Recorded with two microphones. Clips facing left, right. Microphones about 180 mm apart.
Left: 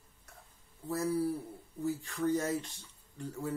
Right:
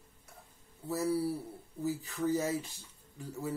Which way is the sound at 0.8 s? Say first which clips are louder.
Even; 5° right (ahead or behind).